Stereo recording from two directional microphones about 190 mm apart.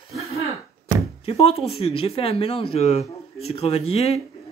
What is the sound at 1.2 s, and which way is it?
Speech, 30° left (ahead or behind).